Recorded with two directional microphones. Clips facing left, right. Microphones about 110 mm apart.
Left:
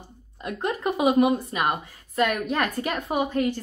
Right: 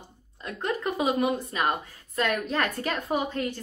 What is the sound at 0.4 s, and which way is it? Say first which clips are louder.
Speech: left 2 dB; 15° left (ahead or behind).